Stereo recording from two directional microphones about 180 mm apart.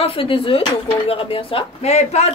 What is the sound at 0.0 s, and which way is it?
Speech, 30° left (ahead or behind).